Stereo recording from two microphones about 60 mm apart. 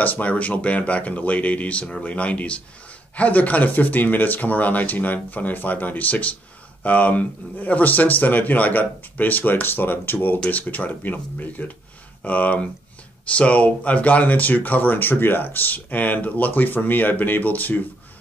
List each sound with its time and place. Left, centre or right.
0.0 s speech: left